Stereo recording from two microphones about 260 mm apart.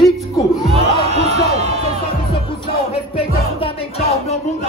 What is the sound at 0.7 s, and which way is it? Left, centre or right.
Speech, right.